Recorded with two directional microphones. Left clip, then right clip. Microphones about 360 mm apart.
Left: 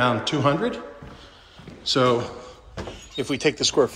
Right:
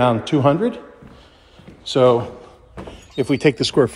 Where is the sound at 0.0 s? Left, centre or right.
Centre.